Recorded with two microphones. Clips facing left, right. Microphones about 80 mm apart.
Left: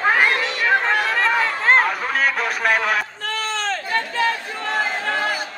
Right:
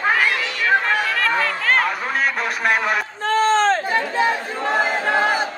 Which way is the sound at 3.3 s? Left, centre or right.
Right.